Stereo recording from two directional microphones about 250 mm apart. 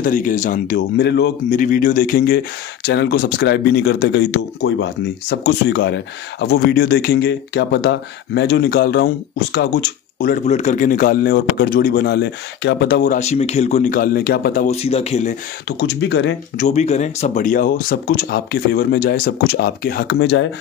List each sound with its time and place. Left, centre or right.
0.0 s speech: left
15.8 s speech: left
16.6 s speech: left